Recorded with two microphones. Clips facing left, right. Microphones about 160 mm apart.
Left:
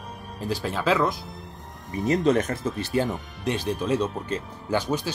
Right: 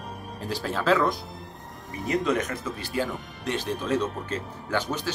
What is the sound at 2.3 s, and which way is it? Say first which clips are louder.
Speech: left 7 dB; 35° left (ahead or behind).